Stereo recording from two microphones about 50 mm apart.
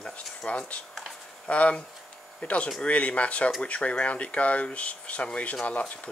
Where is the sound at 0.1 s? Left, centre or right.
Left.